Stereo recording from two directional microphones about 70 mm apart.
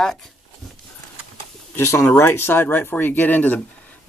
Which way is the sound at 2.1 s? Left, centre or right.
Left.